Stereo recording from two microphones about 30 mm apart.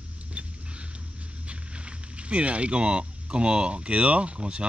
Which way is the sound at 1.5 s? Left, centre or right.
Right.